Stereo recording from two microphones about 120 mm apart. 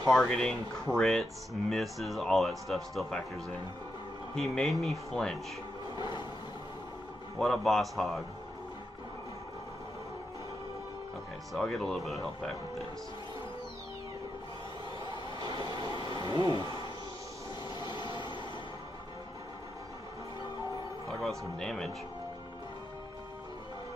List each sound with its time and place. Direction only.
0.1 s speech: 5° left (ahead or behind)
5.9 s a sound: 40° left (ahead or behind)
7.3 s speech: 5° left (ahead or behind)
11.5 s speech: 5° left (ahead or behind)
15.9 s a sound: 25° right (ahead or behind)
16.3 s speech: 40° left (ahead or behind)
17.7 s vehicle: 40° left (ahead or behind)
21.1 s speech: centre (ahead or behind)